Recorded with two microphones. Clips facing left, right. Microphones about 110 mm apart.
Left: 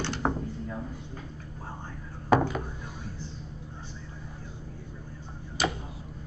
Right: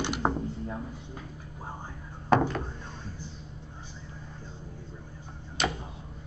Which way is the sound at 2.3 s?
5° left (ahead or behind).